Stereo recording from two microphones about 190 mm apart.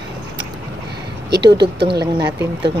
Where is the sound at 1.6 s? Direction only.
60° right (ahead or behind).